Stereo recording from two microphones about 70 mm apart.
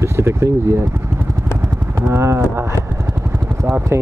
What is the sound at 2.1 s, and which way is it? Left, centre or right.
Speech, right.